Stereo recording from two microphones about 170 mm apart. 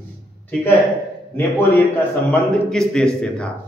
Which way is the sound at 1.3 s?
10° left (ahead or behind).